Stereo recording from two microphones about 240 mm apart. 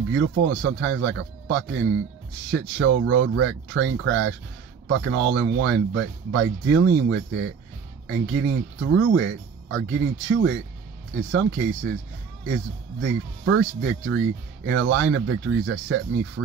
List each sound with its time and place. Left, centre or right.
0.1 s speech: right
13.0 s speech: right